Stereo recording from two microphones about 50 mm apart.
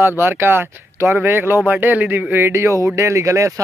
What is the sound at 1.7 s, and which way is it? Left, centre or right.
Speech, right.